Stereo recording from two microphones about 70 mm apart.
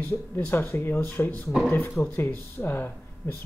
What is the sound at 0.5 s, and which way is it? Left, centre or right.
Speech, left.